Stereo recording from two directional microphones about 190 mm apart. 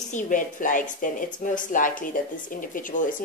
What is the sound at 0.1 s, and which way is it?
A woman's voice, 45° left (ahead or behind).